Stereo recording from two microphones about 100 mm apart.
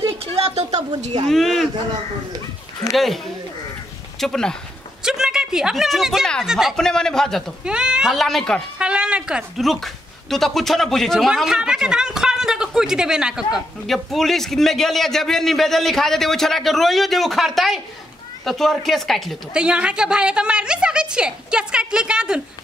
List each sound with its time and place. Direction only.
0.0 s a sound: 75° right (ahead or behind)
0.7 s speech: 45° right (ahead or behind)
1.3 s speech: centre (ahead or behind)
2.9 s speech: centre (ahead or behind)
4.2 s speech: 5° left (ahead or behind)
5.0 s a woman's voice: 5° right (ahead or behind)
6.8 s speech: 5° left (ahead or behind)
7.6 s speech: 10° right (ahead or behind)
8.7 s a woman's voice: 10° right (ahead or behind)
19.5 s a woman's voice: 10° right (ahead or behind)